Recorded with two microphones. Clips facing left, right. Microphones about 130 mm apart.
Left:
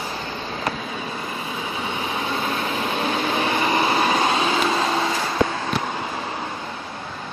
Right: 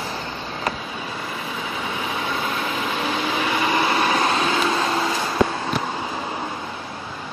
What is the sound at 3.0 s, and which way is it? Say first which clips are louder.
Vehicle: left 1 dB; 40° left (ahead or behind).